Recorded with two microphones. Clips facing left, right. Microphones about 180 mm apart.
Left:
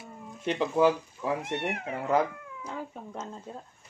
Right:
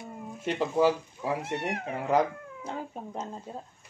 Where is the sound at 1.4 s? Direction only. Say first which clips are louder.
Even; 35° right (ahead or behind).